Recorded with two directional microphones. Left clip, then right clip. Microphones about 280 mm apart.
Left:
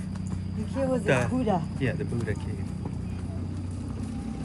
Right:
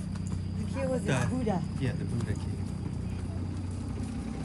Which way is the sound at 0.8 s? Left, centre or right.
Centre.